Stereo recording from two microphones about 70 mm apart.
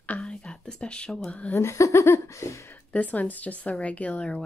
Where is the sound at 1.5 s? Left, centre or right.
Left.